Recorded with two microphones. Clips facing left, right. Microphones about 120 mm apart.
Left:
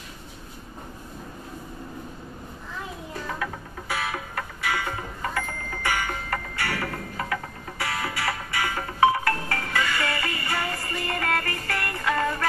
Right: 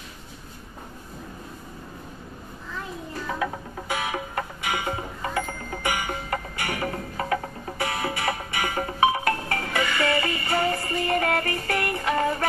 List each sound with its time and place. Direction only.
3.9 s music: 20° right (ahead or behind)